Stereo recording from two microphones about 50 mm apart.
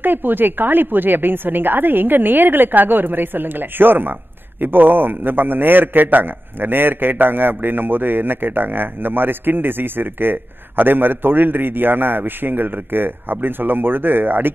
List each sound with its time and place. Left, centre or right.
0.0 s a woman's voice: right